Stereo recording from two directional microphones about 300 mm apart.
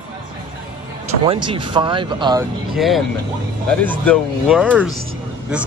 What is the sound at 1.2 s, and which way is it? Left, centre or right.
Speech, centre.